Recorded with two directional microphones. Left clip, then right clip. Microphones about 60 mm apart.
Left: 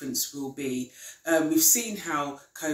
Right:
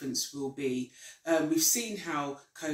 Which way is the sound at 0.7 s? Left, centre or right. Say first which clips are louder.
Left 1 dB; left.